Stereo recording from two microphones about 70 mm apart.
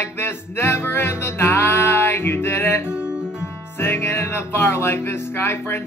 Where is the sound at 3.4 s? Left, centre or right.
Left.